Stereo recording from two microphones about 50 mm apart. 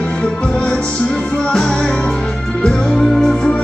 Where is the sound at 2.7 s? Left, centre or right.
Centre.